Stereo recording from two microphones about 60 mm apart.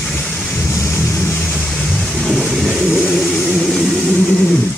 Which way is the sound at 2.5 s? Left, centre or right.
Centre.